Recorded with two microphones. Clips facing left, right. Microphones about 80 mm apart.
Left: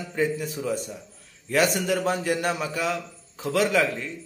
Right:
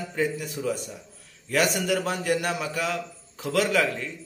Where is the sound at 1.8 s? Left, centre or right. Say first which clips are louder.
Left 1 dB; left.